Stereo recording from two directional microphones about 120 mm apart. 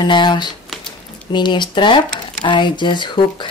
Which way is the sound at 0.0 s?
40° left (ahead or behind).